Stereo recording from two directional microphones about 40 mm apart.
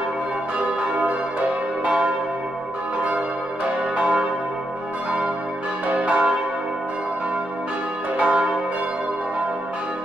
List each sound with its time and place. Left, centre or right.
3.9 s church bell: right
5.9 s change ringing: right
8.2 s change ringing: right